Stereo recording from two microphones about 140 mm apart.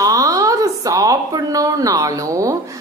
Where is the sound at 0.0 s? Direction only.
25° right (ahead or behind).